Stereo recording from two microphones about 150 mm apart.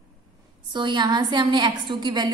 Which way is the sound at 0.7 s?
30° right (ahead or behind).